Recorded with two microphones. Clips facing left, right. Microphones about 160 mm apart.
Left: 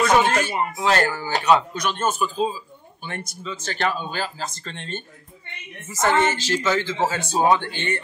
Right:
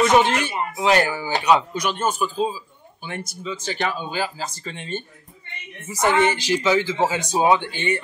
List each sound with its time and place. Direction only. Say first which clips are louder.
0.3 s speech: left 1 dB; 45° left (ahead or behind)
0.7 s speech: right 3 dB; 15° right (ahead or behind)